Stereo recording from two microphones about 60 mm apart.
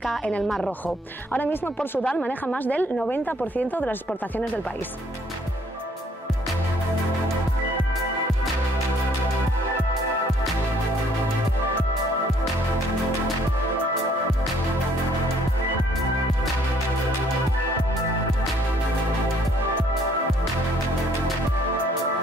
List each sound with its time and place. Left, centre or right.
0.7 s speech: left